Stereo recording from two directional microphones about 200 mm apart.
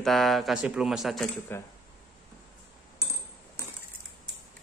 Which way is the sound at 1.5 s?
10° left (ahead or behind).